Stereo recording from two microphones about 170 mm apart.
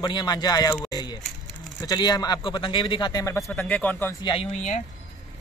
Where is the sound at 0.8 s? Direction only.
25° left (ahead or behind).